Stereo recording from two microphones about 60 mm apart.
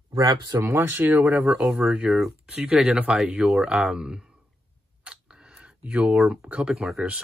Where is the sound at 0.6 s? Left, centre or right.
Right.